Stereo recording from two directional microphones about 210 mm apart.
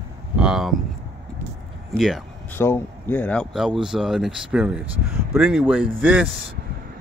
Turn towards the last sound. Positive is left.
turn(degrees=-5)  # may be behind; listen again after turning